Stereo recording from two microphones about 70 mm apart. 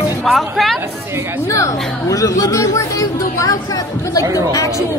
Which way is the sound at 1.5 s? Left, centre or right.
Left.